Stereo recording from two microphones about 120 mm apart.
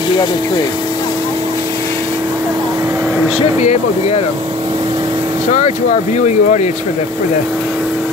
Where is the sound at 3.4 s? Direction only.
65° left (ahead or behind).